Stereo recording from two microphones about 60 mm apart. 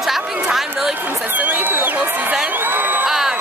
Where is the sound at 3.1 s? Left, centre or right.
Centre.